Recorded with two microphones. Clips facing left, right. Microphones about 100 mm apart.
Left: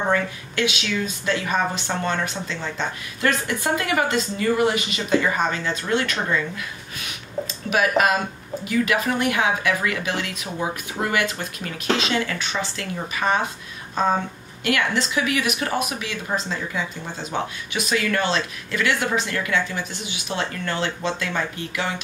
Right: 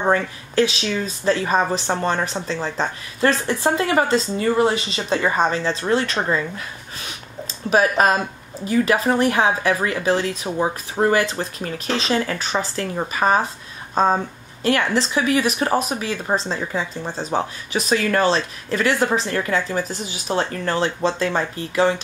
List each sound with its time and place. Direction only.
0.1 s speech: 35° right (ahead or behind)